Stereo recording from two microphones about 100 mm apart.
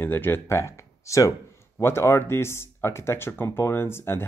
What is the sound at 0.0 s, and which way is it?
Speech, 20° left (ahead or behind).